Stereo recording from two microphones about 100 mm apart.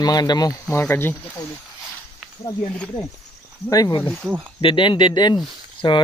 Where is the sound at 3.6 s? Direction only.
40° left (ahead or behind).